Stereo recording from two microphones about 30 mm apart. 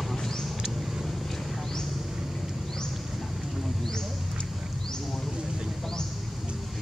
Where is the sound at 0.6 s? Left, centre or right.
Centre.